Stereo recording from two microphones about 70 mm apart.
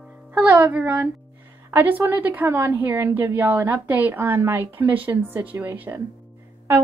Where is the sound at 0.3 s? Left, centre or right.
Right.